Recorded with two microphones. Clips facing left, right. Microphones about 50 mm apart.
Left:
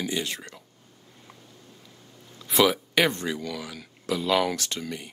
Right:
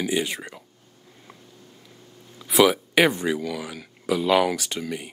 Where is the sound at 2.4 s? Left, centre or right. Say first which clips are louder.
Right 4 dB; centre.